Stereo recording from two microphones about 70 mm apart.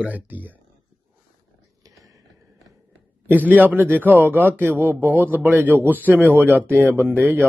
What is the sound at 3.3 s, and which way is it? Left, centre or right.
A man's voice, right.